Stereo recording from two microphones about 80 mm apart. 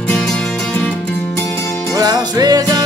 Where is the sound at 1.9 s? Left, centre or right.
Right.